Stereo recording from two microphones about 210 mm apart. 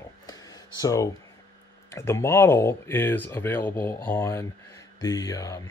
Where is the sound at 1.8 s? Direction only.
15° left (ahead or behind).